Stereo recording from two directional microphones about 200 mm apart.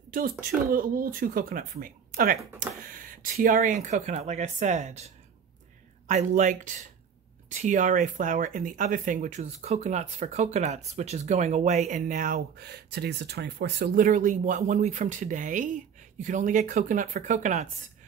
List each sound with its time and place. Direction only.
0.1 s speech: 45° right (ahead or behind)